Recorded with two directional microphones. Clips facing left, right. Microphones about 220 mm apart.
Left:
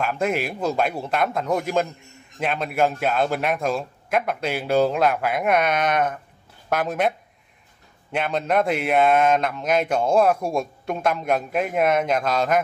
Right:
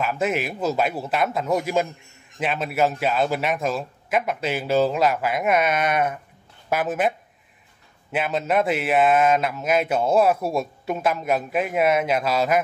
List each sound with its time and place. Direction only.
0.0 s a man's voice: 5° right (ahead or behind)